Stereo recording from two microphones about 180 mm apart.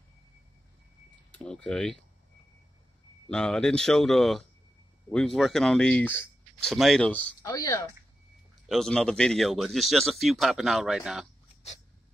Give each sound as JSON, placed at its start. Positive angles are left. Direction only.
{"t": 1.3, "sound": "speech", "side_deg": 5}
{"t": 3.3, "sound": "speech", "side_deg": 5}
{"t": 7.4, "sound": "speech", "side_deg": 20}
{"t": 8.6, "sound": "speech", "side_deg": 0}